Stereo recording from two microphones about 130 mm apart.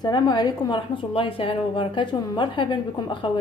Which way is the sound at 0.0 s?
30° left (ahead or behind).